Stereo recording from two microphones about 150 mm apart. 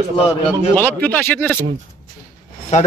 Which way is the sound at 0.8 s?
10° left (ahead or behind).